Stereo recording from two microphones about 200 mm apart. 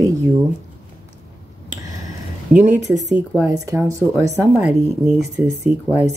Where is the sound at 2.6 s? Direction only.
5° right (ahead or behind).